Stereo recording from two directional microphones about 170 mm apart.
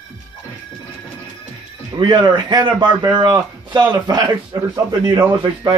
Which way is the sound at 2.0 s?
25° right (ahead or behind).